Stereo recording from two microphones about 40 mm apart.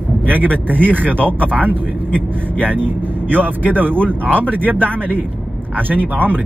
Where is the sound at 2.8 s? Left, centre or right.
Right.